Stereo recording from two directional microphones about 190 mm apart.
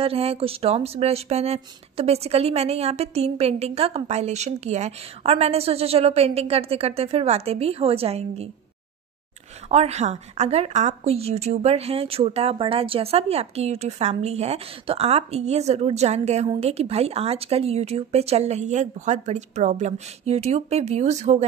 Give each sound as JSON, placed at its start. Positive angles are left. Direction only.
{"t": 0.0, "sound": "a woman's voice", "side_deg": -30}
{"t": 9.7, "sound": "a woman's voice", "side_deg": -35}